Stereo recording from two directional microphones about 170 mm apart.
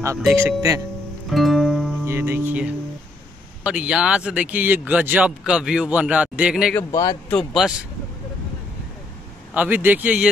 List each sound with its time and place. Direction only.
0.3 s a man's voice: 15° right (ahead or behind)
1.3 s music: centre (ahead or behind)
2.0 s a man's voice: 15° right (ahead or behind)
6.9 s a man's voice: 20° left (ahead or behind)
7.2 s speech: centre (ahead or behind)
9.5 s a man's voice: 10° right (ahead or behind)